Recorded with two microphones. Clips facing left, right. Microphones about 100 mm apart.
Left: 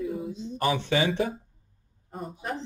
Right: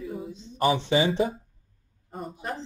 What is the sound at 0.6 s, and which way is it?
Speech, 20° right (ahead or behind).